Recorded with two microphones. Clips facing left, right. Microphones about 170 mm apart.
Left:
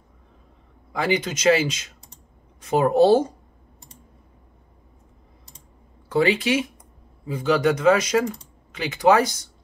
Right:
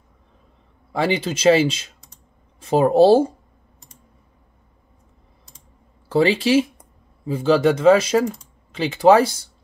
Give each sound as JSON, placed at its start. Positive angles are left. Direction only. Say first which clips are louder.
{"t": 0.9, "sound": "speech", "louder": "right 2 dB", "side_deg": -30}
{"t": 6.0, "sound": "speech", "louder": "right 3 dB", "side_deg": -30}